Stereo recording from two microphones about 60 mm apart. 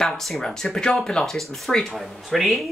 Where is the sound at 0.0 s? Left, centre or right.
Centre.